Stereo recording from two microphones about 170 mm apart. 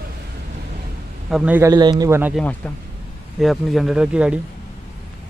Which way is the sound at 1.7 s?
25° right (ahead or behind).